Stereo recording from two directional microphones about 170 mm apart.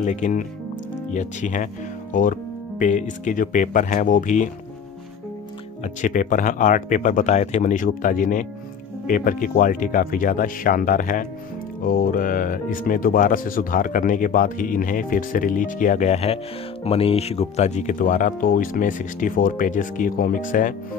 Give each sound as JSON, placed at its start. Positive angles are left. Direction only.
{"t": 0.0, "sound": "speech", "side_deg": 45}
{"t": 5.9, "sound": "speech", "side_deg": 50}